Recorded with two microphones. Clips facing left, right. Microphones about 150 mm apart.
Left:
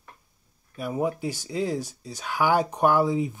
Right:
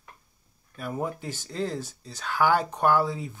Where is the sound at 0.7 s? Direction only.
10° left (ahead or behind).